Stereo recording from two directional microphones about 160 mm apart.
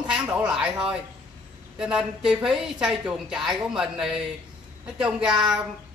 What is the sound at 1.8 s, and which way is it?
A man's voice, 5° right (ahead or behind).